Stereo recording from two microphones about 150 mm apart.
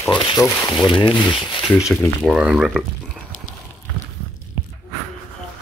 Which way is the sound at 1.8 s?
5° right (ahead or behind).